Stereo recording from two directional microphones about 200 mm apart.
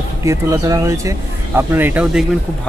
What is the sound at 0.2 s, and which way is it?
Speech, 15° right (ahead or behind).